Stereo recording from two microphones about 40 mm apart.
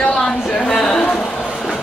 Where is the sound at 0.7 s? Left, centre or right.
Centre.